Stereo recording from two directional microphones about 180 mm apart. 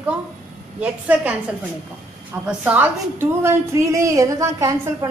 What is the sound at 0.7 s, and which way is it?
Speech, 10° right (ahead or behind).